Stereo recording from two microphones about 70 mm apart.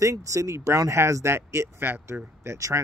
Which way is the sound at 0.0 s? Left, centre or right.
Right.